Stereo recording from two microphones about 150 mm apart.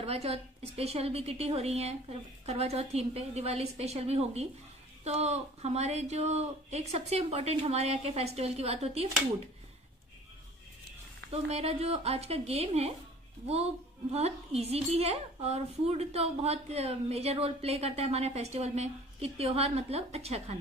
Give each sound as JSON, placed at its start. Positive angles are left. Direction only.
{"t": 0.0, "sound": "speech", "side_deg": -40}
{"t": 11.5, "sound": "speech", "side_deg": -45}
{"t": 14.1, "sound": "speech", "side_deg": -45}